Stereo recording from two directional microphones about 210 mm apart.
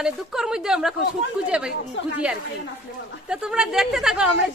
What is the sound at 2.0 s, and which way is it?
Speech, 60° left (ahead or behind).